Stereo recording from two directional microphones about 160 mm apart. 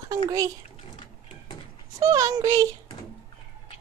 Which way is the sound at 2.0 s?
20° right (ahead or behind).